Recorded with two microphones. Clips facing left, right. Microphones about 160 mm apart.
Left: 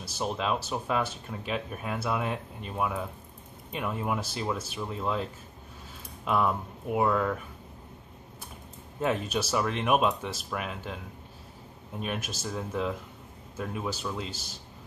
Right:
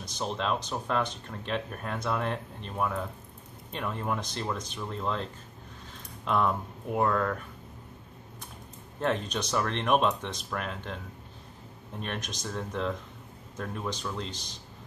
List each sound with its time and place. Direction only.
0.0 s speech: 5° left (ahead or behind)
9.0 s speech: 5° left (ahead or behind)
12.0 s speech: 5° left (ahead or behind)